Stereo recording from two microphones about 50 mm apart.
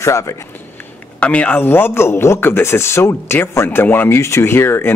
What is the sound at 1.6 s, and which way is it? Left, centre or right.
Speech, left.